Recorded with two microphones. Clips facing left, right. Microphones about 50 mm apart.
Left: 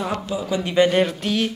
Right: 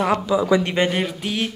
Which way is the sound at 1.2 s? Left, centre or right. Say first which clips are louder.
Left 2 dB; centre.